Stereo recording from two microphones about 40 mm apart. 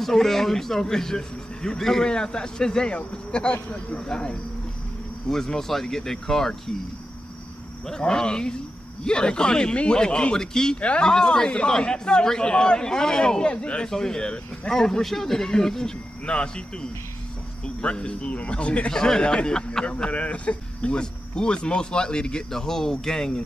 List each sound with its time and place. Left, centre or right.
0.0 s a man's voice: centre
7.8 s a man's voice: centre
10.8 s a man's voice: left
13.8 s a man's voice: centre; by 18.9 s left
18.9 s a man's voice: centre